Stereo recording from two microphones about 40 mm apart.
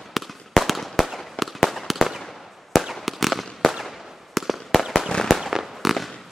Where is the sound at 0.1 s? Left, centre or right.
Centre.